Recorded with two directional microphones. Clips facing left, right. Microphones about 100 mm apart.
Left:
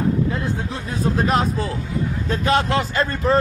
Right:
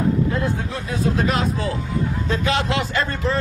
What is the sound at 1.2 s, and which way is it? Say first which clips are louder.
A man's voice: left 1 dB; 40° left (ahead or behind).